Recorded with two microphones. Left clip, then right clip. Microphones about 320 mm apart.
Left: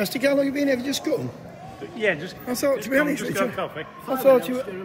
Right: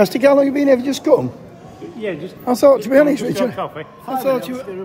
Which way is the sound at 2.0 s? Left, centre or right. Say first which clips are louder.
Left 2 dB; left.